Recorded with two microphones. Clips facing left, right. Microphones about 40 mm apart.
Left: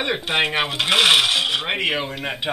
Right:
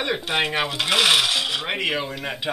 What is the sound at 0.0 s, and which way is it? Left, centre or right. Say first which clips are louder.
Speech: left 2 dB; centre.